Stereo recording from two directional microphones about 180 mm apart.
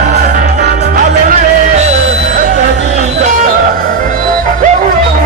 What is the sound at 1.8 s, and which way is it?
Music, 45° right (ahead or behind).